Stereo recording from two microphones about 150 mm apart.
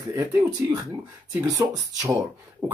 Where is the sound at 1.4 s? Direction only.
25° right (ahead or behind).